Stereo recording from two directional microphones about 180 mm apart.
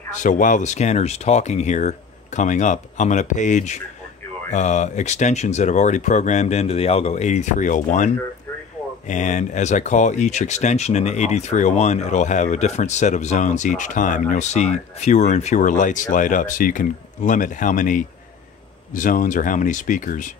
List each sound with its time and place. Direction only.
0.1 s speech: 45° left (ahead or behind)